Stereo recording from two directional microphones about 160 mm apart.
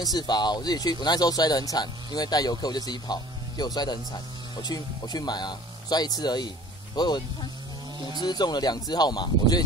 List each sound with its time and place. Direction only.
0.0 s speech: 25° left (ahead or behind)